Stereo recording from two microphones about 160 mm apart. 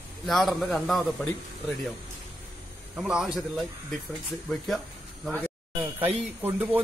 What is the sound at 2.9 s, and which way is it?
A man's voice, 5° right (ahead or behind).